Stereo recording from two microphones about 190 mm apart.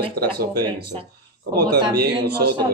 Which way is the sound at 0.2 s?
55° right (ahead or behind).